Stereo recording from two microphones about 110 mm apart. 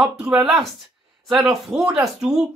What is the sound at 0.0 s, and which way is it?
Speech, 5° right (ahead or behind).